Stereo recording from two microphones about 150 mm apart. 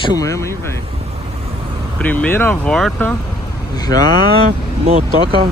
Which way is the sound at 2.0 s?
10° left (ahead or behind).